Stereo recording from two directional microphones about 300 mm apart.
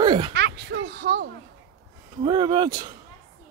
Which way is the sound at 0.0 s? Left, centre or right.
Centre.